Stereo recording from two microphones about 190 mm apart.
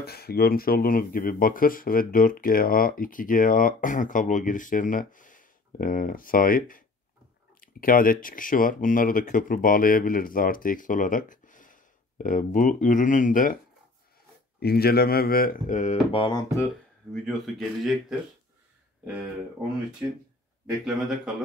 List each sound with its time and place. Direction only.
0.0 s speech: 55° left (ahead or behind)
14.6 s speech: 55° left (ahead or behind); by 16.6 s 20° left (ahead or behind)
17.1 s speech: centre (ahead or behind)
20.8 s speech: centre (ahead or behind)